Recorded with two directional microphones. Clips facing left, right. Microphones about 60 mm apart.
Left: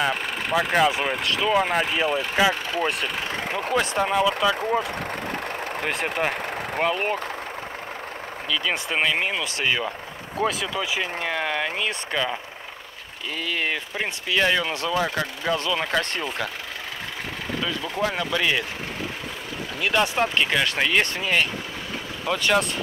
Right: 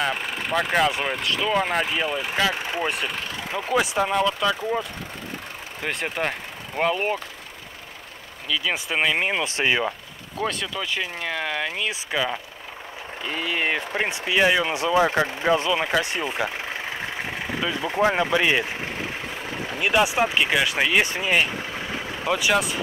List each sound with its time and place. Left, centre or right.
0.0 s speech: centre
5.9 s speech: centre
8.5 s speech: centre
9.3 s speech: centre
10.4 s speech: centre
17.6 s speech: right
19.8 s speech: centre